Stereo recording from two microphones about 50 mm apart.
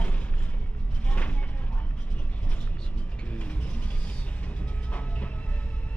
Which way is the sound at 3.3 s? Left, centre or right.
Left.